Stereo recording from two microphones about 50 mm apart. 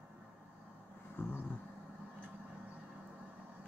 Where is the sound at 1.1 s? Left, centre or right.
Left.